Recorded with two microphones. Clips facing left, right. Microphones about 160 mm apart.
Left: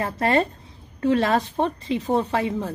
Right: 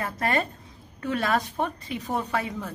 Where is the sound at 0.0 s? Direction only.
30° left (ahead or behind).